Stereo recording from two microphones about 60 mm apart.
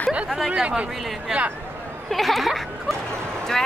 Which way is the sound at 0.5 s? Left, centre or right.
Right.